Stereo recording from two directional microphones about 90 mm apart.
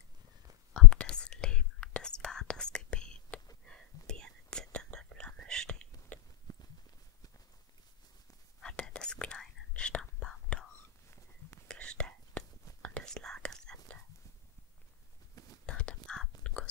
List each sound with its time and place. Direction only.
0.7 s whispering: 10° left (ahead or behind)
6.5 s walk: 45° left (ahead or behind)
8.5 s whispering: 10° left (ahead or behind)
15.3 s whispering: 45° left (ahead or behind)
15.6 s whispering: 10° left (ahead or behind)